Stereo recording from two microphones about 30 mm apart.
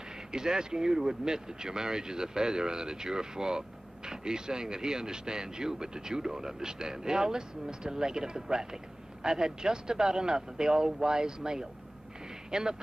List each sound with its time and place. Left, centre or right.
0.3 s speech: right